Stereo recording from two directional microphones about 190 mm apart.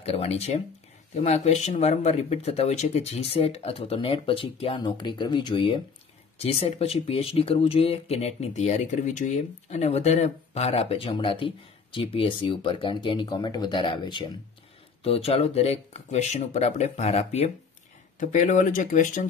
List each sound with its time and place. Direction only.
0.0 s speech: 30° left (ahead or behind)